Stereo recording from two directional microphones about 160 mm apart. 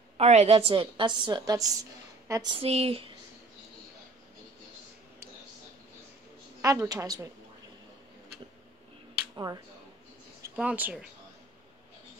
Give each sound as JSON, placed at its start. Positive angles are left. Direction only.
{"t": 0.2, "sound": "a woman's voice", "side_deg": -40}
{"t": 2.6, "sound": "speech", "side_deg": -40}
{"t": 6.6, "sound": "a woman's voice", "side_deg": -20}
{"t": 9.3, "sound": "speech", "side_deg": -20}
{"t": 10.5, "sound": "speech", "side_deg": -10}